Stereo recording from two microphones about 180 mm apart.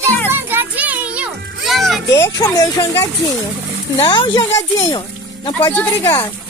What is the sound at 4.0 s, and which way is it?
Speech, 30° left (ahead or behind).